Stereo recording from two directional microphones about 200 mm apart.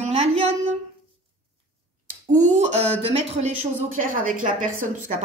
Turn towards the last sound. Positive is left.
turn(degrees=-40)  # may be behind; listen again after turning